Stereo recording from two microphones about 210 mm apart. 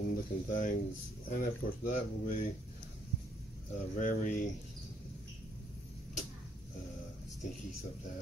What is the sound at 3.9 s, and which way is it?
Speech, 40° left (ahead or behind).